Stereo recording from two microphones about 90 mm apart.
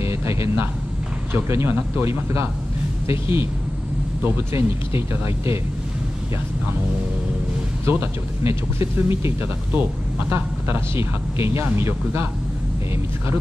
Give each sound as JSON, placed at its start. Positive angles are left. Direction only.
{"t": 0.0, "sound": "a sound", "side_deg": -30}
{"t": 1.3, "sound": "speech", "side_deg": -30}
{"t": 7.8, "sound": "speech", "side_deg": -25}